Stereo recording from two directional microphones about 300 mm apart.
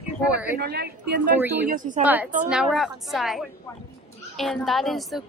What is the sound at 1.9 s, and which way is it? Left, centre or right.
Speech, centre.